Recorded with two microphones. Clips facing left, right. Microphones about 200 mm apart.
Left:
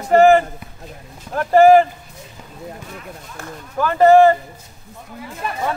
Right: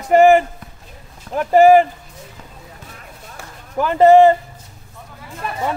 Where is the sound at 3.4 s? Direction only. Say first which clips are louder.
Left 6 dB; 10° right (ahead or behind).